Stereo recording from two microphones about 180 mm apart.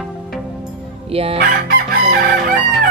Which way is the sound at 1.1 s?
35° right (ahead or behind).